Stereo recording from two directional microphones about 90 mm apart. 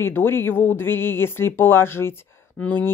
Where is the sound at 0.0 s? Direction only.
25° left (ahead or behind).